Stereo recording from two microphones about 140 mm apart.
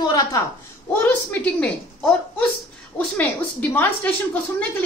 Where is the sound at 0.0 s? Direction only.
30° left (ahead or behind).